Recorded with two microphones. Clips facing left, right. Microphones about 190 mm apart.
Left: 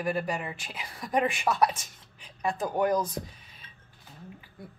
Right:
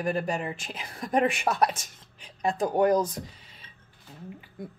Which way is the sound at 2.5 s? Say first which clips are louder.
Right 4 dB; 20° right (ahead or behind).